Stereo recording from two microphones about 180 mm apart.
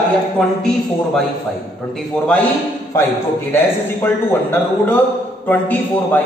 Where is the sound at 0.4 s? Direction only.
5° left (ahead or behind).